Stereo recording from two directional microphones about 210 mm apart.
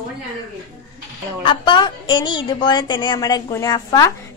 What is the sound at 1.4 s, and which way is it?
A woman's voice, 25° left (ahead or behind).